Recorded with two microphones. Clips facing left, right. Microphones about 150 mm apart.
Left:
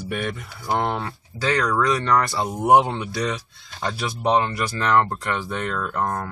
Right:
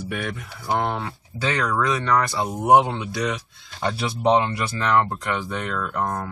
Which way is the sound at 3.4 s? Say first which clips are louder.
Right 1 dB; 20° right (ahead or behind).